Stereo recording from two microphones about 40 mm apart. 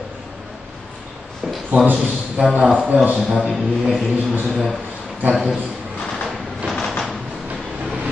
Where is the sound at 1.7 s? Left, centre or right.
Right.